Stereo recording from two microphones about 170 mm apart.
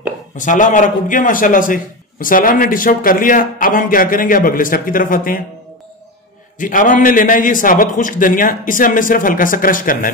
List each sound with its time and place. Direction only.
0.4 s a man's voice: 50° left (ahead or behind)
6.6 s a man's voice: 50° left (ahead or behind)